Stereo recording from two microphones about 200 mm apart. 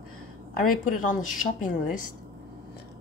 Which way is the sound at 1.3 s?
40° left (ahead or behind).